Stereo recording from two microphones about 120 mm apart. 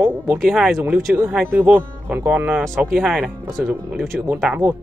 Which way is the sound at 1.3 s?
15° right (ahead or behind).